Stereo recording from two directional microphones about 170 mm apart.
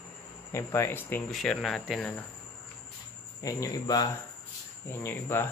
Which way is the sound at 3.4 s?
20° left (ahead or behind).